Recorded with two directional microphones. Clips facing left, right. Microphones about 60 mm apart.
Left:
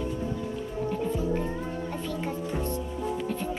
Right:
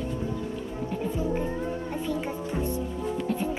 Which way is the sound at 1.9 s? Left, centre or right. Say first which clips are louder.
Right 2 dB; centre.